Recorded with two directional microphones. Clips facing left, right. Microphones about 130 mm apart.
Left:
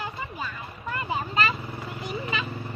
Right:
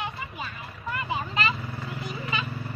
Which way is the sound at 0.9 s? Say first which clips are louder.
Left 1 dB; 35° left (ahead or behind).